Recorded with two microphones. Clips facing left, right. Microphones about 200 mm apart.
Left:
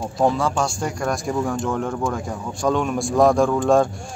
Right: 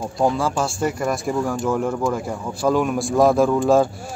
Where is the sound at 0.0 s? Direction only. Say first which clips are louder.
Even; centre (ahead or behind).